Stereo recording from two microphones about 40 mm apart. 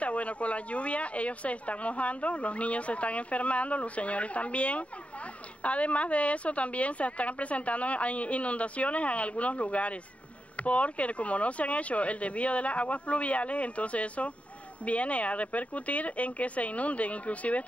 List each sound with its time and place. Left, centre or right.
0.0 s speech: left